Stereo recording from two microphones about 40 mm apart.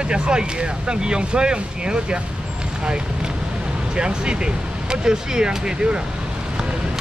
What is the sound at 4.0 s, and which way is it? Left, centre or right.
Speech, right.